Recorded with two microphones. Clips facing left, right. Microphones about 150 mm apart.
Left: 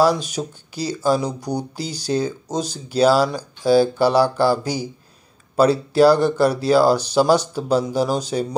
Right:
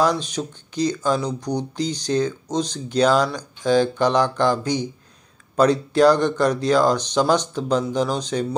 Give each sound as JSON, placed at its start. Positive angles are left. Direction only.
{"t": 0.0, "sound": "speech", "side_deg": 10}